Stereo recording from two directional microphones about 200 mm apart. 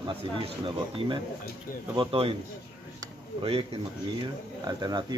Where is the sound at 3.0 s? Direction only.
25° right (ahead or behind).